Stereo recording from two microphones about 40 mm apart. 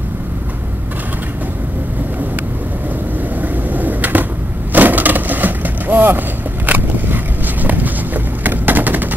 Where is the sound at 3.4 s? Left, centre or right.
Right.